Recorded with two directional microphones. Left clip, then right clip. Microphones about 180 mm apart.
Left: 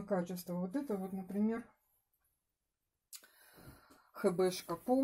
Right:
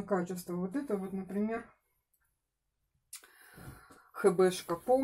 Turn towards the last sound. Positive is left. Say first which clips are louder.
# right 6 dB
turn(degrees=45)  # may be behind; listen again after turning